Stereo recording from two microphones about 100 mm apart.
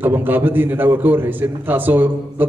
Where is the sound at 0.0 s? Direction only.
20° right (ahead or behind).